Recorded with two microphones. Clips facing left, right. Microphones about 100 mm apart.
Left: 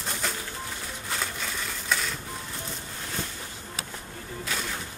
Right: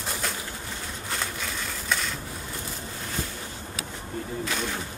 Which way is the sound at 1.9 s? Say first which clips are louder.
Even; centre (ahead or behind).